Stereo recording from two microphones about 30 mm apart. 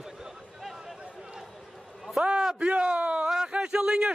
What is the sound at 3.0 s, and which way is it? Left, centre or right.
Speech, right.